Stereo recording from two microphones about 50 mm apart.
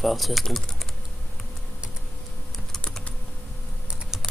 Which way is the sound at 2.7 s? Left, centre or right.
Centre.